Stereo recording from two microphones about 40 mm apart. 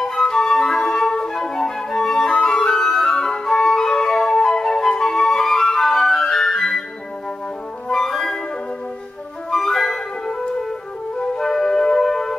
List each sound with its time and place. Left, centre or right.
0.0 s flute: centre
7.9 s music: centre
9.5 s flute: centre
11.3 s music: centre